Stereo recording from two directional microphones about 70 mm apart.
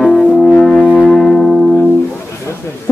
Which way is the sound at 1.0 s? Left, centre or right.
Centre.